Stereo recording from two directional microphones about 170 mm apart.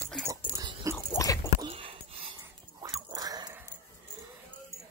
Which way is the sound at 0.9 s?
20° left (ahead or behind).